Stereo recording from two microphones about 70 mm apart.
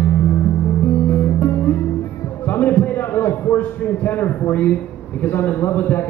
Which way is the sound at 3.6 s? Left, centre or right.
Left.